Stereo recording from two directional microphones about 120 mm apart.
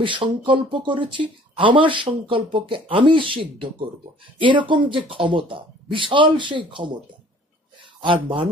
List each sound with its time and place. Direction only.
0.0 s speech: 45° right (ahead or behind)
8.0 s speech: 45° right (ahead or behind)